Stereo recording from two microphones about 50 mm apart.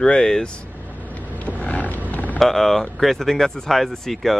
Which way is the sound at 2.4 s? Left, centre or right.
Centre.